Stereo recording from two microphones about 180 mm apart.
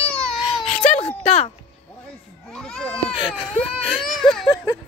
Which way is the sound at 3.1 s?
30° left (ahead or behind).